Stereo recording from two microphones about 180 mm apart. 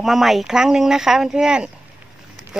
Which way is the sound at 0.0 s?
Centre (ahead or behind).